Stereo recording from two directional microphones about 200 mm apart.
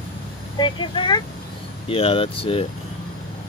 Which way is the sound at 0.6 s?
25° left (ahead or behind).